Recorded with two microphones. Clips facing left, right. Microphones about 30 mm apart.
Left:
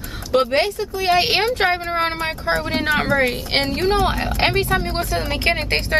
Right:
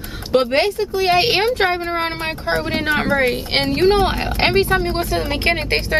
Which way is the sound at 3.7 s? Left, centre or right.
Right.